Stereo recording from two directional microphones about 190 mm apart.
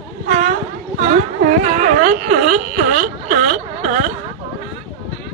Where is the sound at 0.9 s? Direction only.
40° right (ahead or behind).